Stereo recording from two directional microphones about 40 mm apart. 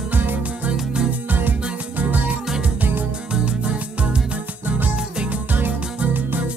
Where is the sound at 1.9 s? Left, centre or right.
Right.